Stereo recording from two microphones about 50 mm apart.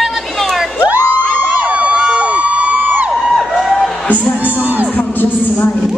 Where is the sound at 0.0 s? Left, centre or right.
Centre.